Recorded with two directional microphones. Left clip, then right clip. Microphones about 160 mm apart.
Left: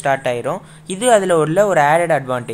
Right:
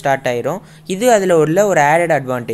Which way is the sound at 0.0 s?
25° right (ahead or behind).